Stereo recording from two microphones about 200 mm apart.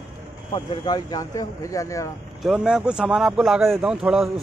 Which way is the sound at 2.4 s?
5° right (ahead or behind).